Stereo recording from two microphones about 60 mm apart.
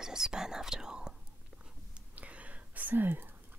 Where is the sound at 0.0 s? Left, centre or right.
Centre.